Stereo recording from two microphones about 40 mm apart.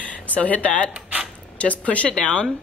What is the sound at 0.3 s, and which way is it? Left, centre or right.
Speech, left.